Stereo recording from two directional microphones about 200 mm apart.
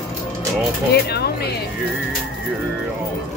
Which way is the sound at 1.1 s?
55° left (ahead or behind).